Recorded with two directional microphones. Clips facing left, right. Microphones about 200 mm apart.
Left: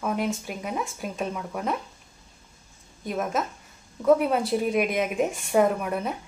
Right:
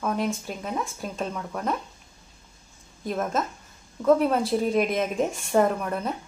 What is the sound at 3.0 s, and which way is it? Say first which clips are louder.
Speech: right 1 dB; centre (ahead or behind).